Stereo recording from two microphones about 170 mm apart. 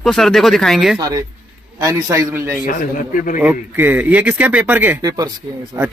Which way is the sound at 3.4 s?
10° right (ahead or behind).